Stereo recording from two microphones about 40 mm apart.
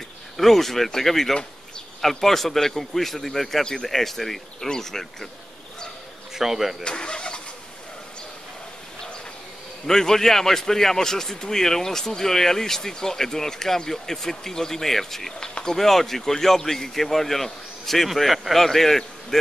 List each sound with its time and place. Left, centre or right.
0.4 s speech: centre
6.3 s speech: centre
6.8 s vehicle: left
9.8 s speech: centre